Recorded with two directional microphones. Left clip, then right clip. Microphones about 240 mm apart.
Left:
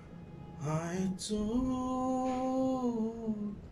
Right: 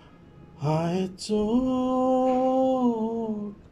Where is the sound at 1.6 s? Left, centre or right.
Right.